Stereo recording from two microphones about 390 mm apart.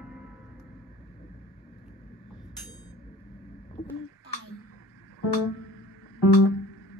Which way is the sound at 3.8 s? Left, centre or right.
Centre.